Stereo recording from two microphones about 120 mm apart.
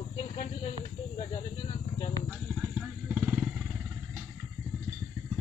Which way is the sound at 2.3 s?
5° right (ahead or behind).